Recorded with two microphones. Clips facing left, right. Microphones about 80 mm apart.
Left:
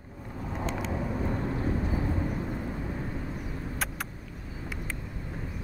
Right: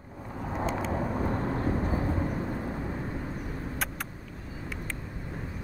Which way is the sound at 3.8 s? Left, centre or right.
Centre.